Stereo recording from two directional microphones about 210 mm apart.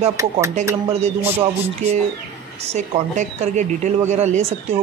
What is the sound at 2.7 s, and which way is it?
Speech, 35° right (ahead or behind).